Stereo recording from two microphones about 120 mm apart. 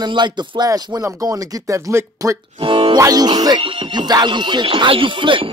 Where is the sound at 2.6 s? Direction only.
45° right (ahead or behind).